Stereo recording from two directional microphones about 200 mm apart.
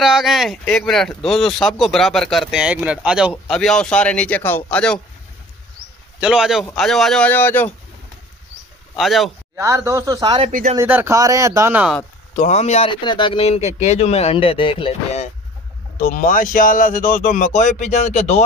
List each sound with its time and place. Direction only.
0.0 s speech: centre (ahead or behind)
6.1 s speech: 5° right (ahead or behind)
8.9 s speech: centre (ahead or behind)
9.6 s speech: 15° right (ahead or behind)
10.5 s speech: 40° right (ahead or behind)
10.8 s speech: 10° right (ahead or behind)
12.4 s speech: 35° left (ahead or behind)
16.0 s speech: 40° left (ahead or behind)